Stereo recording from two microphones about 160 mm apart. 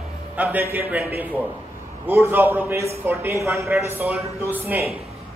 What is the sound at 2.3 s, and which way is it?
A man's voice, 15° right (ahead or behind).